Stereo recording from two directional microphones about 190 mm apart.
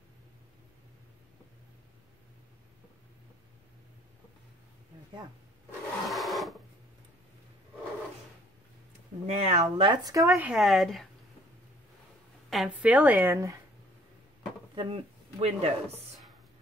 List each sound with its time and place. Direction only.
6.0 s sewing machine: centre (ahead or behind)
9.3 s speech: 35° right (ahead or behind)
10.3 s speech: 5° right (ahead or behind)
12.4 s a woman's voice: 5° right (ahead or behind)
14.8 s speech: 30° right (ahead or behind)